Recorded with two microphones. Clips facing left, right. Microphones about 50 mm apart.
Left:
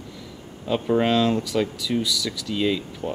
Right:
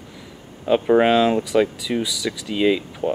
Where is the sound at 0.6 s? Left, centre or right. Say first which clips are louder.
Right 5 dB; right.